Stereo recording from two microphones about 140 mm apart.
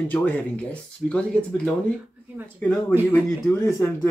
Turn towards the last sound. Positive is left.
turn(degrees=15)  # may be behind; listen again after turning